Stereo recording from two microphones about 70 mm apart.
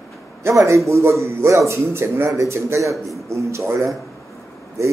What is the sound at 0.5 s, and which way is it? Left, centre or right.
A man's voice, right.